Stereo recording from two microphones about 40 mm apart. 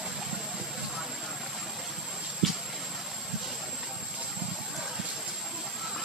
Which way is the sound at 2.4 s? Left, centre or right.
Centre.